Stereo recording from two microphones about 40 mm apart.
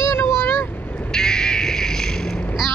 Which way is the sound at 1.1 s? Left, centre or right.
Centre.